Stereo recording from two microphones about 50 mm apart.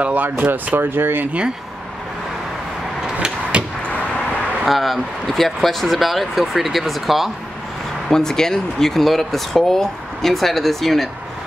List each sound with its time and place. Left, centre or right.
0.0 s speech: right
0.7 s speech: right
3.2 s a sound: centre
3.8 s a sound: left
4.6 s speech: centre
8.1 s speech: centre